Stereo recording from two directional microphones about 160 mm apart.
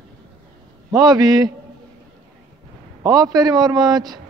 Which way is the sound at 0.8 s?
25° right (ahead or behind).